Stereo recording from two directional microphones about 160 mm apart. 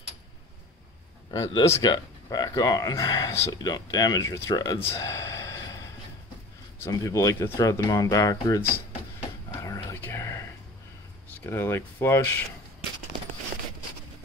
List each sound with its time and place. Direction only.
1.3 s speech: 20° left (ahead or behind)
6.8 s speech: 20° left (ahead or behind)
9.6 s whispering: 20° left (ahead or behind)
11.2 s speech: 15° left (ahead or behind)